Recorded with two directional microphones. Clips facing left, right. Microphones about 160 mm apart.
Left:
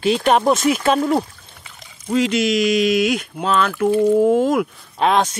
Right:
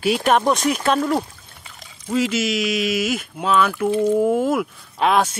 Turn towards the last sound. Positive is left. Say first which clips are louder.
# left 1 dB
turn(degrees=-5)  # may be behind; listen again after turning